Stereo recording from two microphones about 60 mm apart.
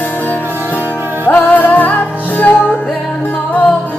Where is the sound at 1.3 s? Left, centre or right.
Left.